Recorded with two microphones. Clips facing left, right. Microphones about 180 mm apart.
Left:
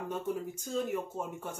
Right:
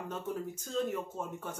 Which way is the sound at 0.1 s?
10° left (ahead or behind).